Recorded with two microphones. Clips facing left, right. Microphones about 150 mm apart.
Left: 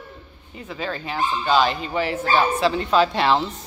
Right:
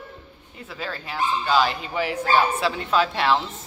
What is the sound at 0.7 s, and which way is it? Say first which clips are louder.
Speech: left 4 dB; 5° right (ahead or behind).